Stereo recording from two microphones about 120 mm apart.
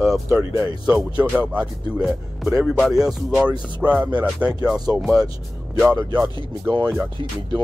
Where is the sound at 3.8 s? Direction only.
10° right (ahead or behind).